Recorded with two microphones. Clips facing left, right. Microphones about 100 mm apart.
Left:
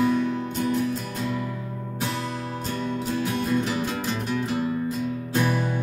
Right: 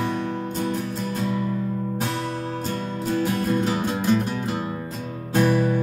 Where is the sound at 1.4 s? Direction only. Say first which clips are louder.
Right 6 dB; 50° right (ahead or behind).